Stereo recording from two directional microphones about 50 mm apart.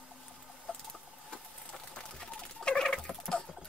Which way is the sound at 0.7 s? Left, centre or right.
Centre.